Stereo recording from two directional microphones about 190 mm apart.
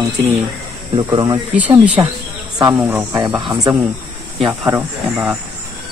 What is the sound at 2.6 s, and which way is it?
Speech, 20° right (ahead or behind).